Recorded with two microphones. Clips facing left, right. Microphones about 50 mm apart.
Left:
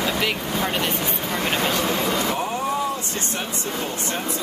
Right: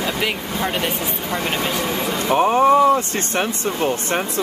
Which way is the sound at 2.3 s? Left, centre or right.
Right.